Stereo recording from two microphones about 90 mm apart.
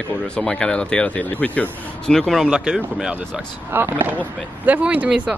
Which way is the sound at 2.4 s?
15° right (ahead or behind).